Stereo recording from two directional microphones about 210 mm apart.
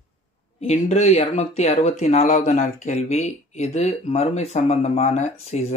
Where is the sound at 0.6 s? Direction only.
30° left (ahead or behind).